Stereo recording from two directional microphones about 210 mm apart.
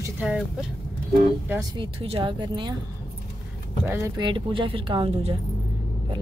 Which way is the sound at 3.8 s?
10° right (ahead or behind).